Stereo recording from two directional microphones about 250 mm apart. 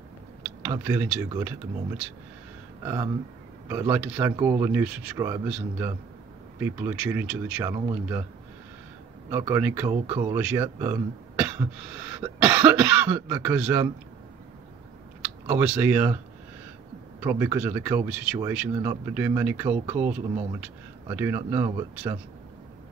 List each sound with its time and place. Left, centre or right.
0.7 s speech: centre
2.8 s speech: centre
9.3 s speech: centre
15.2 s speech: centre
17.2 s speech: centre